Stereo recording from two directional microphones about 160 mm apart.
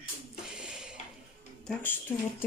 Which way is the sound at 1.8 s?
10° left (ahead or behind).